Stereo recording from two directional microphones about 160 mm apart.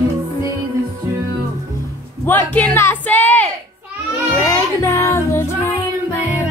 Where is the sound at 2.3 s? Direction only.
10° left (ahead or behind).